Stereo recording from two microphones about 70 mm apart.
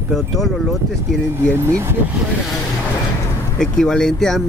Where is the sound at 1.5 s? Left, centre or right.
Right.